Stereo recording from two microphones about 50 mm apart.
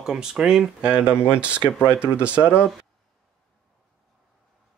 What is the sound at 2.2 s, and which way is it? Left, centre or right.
Speech, right.